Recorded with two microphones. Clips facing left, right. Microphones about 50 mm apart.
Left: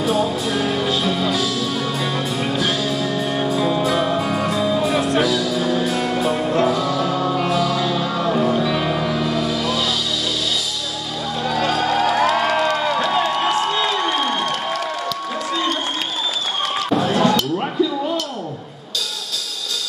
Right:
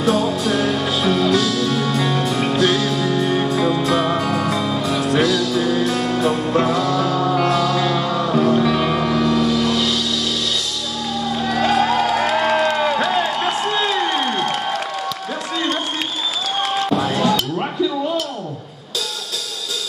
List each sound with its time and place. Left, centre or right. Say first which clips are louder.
0.0 s music: right 2 dB; centre
1.2 s music: right 3 dB; centre
4.7 s music: even; centre
6.6 s music: right 1 dB; centre
11.5 s music: right 2 dB; right
12.2 s music: even; centre
16.9 s music: left 5 dB; centre
17.4 s a sound: left 1 dB; centre